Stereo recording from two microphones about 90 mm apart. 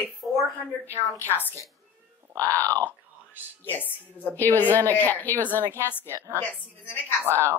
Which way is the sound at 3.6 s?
20° left (ahead or behind).